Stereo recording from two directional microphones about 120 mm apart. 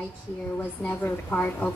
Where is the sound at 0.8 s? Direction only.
15° left (ahead or behind).